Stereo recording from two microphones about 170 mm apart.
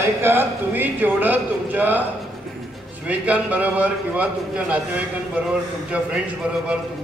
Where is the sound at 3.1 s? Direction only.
10° right (ahead or behind).